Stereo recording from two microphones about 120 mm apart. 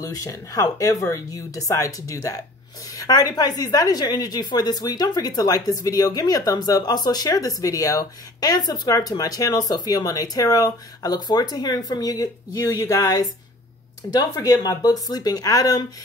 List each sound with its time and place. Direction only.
0.0 s a woman's voice: 25° left (ahead or behind)